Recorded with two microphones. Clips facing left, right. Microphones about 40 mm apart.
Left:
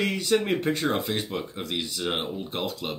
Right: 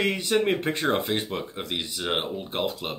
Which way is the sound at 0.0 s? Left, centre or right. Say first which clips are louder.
Right 1 dB; centre.